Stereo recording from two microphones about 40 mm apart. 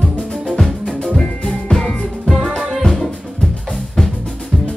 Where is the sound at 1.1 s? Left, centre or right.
Centre.